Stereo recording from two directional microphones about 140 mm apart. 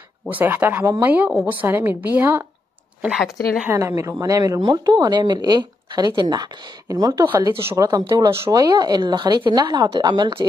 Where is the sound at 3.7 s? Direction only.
20° right (ahead or behind).